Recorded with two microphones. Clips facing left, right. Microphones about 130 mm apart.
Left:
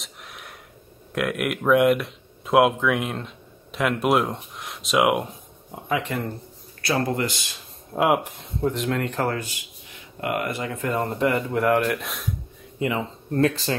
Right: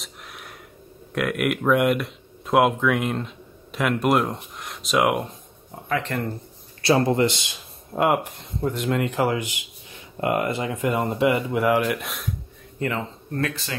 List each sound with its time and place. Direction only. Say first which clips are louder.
0.0 s a sound: right 1 dB; centre (ahead or behind)
1.1 s speech: right 2 dB; centre (ahead or behind)
5.9 s speech: even; 15° left (ahead or behind)
6.8 s a man's voice: right 5 dB; 25° right (ahead or behind)
7.9 s speech: even; centre (ahead or behind)
13.3 s speech: left 7 dB; 30° left (ahead or behind)